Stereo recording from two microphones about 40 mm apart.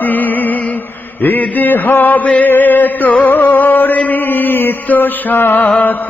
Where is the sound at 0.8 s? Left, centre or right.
Left.